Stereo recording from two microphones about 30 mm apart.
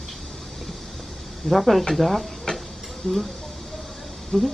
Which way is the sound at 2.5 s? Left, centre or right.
Left.